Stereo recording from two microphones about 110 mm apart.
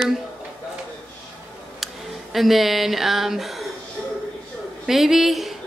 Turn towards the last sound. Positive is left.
turn(degrees=0)  # may be behind; listen again after turning